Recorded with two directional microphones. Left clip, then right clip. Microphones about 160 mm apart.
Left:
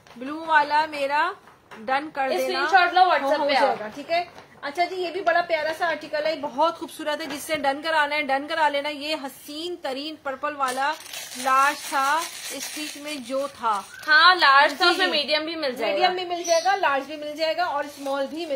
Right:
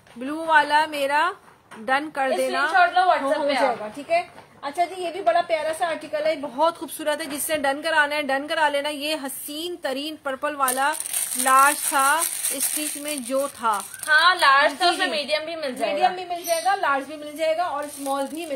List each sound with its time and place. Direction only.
0.2 s a woman's voice: 30° right (ahead or behind)
2.7 s a woman's voice: 45° left (ahead or behind)
4.6 s a woman's voice: 10° left (ahead or behind)
7.1 s a woman's voice: 15° right (ahead or behind); by 13.8 s 30° right (ahead or behind)
14.0 s a woman's voice: 40° left (ahead or behind)
15.8 s a woman's voice: 25° left (ahead or behind)
16.8 s a woman's voice: 5° left (ahead or behind)